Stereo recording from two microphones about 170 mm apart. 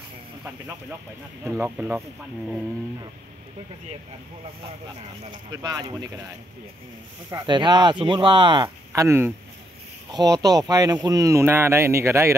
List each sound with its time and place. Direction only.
1.4 s speech: 15° right (ahead or behind)
5.3 s speech: 25° right (ahead or behind)
7.2 s speech: 25° right (ahead or behind)
8.6 s speech: 15° right (ahead or behind)